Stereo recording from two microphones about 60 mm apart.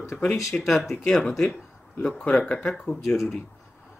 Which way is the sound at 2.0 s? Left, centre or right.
Left.